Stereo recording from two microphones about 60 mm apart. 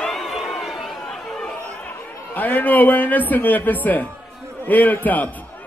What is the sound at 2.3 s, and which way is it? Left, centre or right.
A man's voice, left.